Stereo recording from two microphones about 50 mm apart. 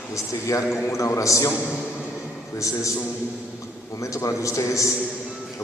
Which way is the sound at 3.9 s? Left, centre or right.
Left.